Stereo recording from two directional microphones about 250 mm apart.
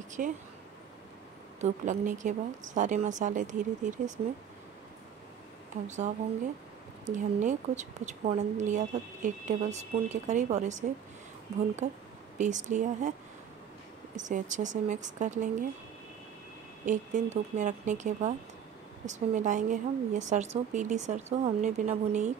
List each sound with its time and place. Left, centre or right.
0.2 s speech: right
1.6 s a woman's voice: right
5.9 s a woman's voice: right
14.1 s a woman's voice: right
16.8 s a woman's voice: right